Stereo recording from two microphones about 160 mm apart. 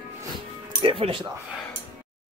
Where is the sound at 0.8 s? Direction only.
35° right (ahead or behind).